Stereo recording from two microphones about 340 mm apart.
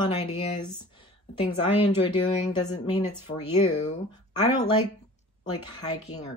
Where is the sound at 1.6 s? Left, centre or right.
Centre.